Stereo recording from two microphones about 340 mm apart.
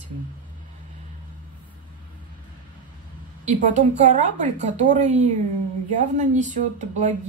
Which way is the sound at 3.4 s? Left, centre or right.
Right.